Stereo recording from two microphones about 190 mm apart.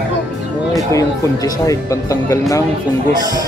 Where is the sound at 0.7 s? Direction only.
20° left (ahead or behind).